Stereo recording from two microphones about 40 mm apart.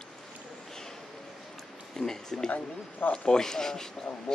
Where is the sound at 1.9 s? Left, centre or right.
Centre.